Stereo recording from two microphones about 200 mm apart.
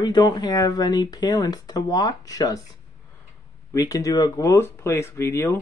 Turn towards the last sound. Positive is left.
turn(degrees=15)  # may be behind; listen again after turning